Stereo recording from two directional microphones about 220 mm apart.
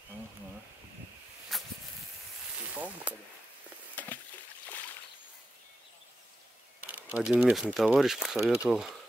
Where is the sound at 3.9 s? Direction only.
5° left (ahead or behind).